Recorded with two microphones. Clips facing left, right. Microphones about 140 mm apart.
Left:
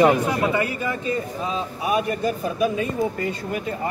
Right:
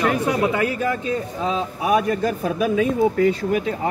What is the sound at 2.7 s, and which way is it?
Speech, 90° right.